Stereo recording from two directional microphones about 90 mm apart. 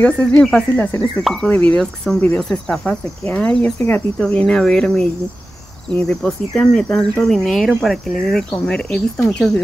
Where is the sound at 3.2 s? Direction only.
15° left (ahead or behind).